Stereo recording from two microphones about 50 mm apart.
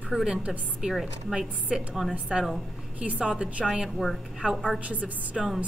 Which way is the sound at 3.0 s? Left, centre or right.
Centre.